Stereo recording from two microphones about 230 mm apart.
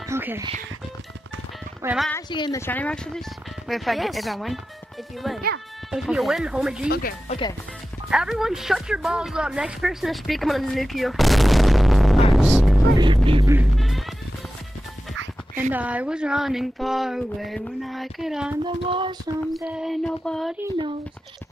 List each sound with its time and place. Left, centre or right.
0.1 s music: centre
1.8 s speech: centre
2.2 s a woman's voice: centre
6.9 s speech: left
7.2 s speech: left
8.1 s a woman's voice: centre
12.3 s music: centre
12.9 s music: centre
13.7 s music: centre
15.7 s a woman's voice: centre
18.6 s child singing: right
19.5 s a woman's voice: centre